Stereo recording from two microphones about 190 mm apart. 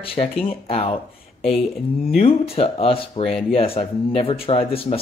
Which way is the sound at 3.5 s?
30° left (ahead or behind).